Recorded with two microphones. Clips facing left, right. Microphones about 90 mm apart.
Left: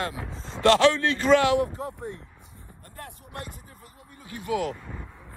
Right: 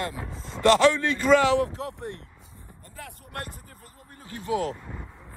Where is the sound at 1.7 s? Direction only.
75° right (ahead or behind).